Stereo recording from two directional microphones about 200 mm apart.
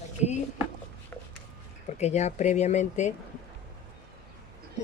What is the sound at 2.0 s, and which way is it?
Speech, 35° left (ahead or behind).